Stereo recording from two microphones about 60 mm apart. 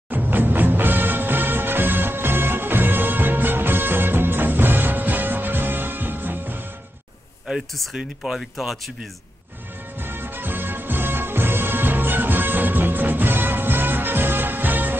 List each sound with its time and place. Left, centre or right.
0.1 s music: right
7.4 s speech: centre
9.9 s music: right